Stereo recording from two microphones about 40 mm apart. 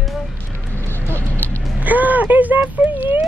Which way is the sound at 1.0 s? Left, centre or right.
Left.